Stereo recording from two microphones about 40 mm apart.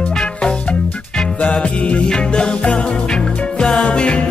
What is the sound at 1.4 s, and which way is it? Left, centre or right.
Music, left.